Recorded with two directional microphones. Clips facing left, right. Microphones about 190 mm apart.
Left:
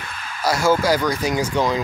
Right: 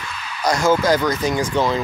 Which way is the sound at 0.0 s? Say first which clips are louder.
Right 2 dB; 50° left (ahead or behind).